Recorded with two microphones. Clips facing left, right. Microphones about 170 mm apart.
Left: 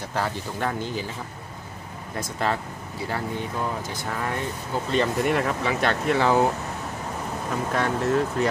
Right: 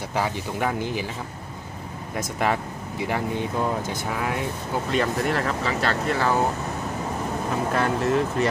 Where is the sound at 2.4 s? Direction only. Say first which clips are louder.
Right 2 dB; 15° right (ahead or behind); by 5.7 s centre (ahead or behind).